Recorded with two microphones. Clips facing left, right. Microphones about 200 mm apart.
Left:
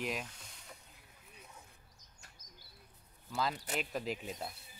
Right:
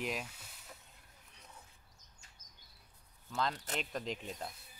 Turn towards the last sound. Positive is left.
turn(degrees=5)  # may be behind; listen again after turning